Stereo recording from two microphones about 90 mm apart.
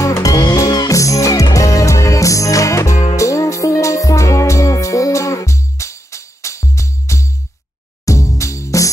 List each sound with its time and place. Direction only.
0.0 s music: 35° left (ahead or behind)